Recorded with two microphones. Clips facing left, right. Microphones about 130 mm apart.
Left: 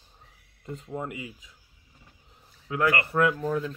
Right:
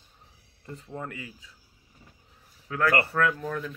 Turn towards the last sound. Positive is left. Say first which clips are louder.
# left 3 dB
turn(degrees=20)  # may be behind; listen again after turning